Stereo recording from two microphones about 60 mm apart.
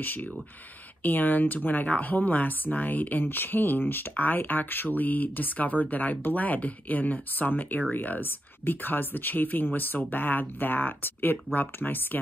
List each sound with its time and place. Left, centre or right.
0.0 s speech: left